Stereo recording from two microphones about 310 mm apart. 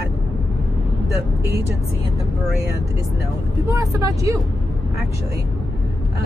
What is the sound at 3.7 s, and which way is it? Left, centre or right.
Speech, centre.